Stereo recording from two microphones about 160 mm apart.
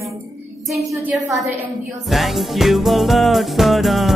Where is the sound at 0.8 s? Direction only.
20° right (ahead or behind).